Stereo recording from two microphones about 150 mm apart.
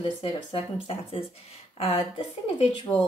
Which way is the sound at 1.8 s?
40° left (ahead or behind).